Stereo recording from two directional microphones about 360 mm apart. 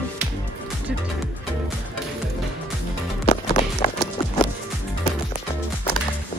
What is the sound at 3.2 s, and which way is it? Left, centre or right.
Music, centre.